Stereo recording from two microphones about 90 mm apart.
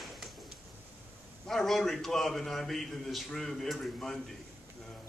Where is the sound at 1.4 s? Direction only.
5° left (ahead or behind).